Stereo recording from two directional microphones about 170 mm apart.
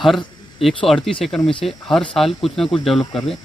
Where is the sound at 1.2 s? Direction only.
Centre (ahead or behind).